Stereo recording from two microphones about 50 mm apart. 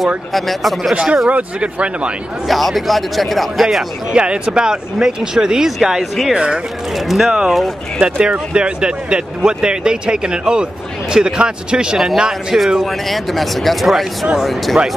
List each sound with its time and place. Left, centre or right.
0.3 s a man's voice: centre
1.3 s speech: right
2.4 s a man's voice: centre
4.1 s a man's voice: centre
7.2 s a man's voice: centre
12.8 s a man's voice: centre